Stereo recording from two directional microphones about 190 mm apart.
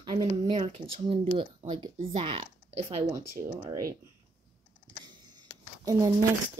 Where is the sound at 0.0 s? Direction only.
25° right (ahead or behind).